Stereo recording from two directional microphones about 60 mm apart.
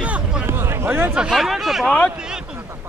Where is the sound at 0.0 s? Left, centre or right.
Right.